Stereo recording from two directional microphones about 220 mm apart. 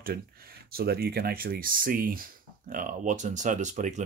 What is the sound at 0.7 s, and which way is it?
Speech, 45° right (ahead or behind).